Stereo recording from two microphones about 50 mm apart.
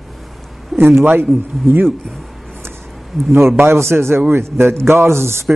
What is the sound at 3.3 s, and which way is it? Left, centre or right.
A man's voice, right.